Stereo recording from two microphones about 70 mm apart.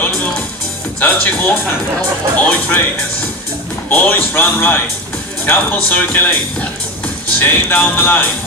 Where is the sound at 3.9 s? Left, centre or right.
Left.